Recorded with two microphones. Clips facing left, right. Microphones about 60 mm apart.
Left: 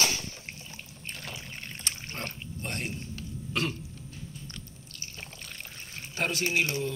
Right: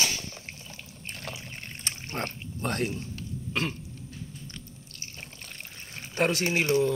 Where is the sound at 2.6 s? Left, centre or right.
Right.